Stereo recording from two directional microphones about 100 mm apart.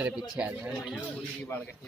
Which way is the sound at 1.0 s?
20° left (ahead or behind).